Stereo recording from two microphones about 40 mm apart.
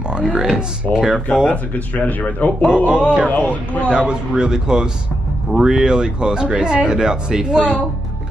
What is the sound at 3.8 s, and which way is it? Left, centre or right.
Speech, right.